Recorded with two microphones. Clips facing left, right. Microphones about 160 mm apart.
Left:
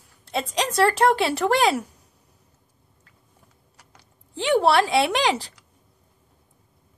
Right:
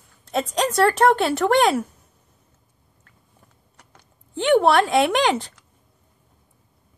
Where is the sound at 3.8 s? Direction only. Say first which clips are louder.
Right 2 dB; 35° left (ahead or behind).